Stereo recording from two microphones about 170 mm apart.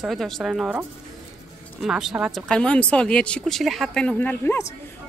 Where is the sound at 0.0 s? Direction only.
Centre (ahead or behind).